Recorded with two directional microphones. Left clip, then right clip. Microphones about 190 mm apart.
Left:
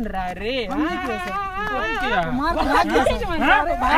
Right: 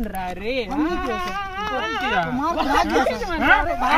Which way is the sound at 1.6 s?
20° left (ahead or behind).